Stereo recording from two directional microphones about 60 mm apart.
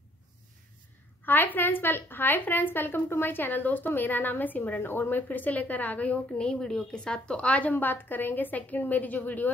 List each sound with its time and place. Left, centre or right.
1.2 s a woman's voice: left
7.7 s a woman's voice: left